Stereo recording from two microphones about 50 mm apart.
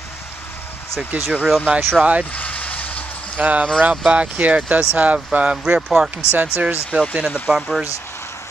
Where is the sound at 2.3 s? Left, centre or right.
Left.